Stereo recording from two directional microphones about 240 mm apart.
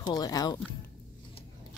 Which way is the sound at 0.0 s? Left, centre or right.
Centre.